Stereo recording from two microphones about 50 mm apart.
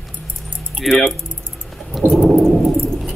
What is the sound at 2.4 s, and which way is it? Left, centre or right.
Keys jangling, centre.